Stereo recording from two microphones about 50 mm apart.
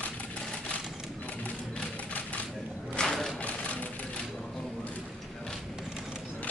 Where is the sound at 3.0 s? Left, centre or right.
Centre.